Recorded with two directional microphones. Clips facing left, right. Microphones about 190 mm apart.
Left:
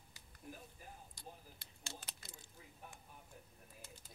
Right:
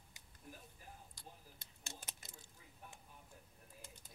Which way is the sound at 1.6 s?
20° right (ahead or behind).